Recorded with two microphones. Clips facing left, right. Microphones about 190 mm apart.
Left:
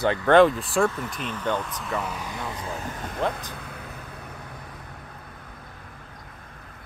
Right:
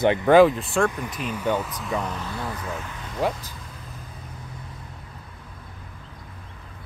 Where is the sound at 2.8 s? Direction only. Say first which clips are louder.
Left 3 dB; 45° left (ahead or behind).